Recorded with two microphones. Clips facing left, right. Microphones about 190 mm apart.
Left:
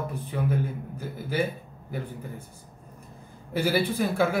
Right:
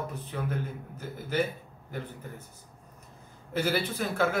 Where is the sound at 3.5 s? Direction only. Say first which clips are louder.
Left 4 dB; 10° left (ahead or behind).